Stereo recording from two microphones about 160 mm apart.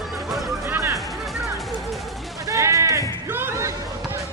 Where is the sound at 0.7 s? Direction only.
15° right (ahead or behind).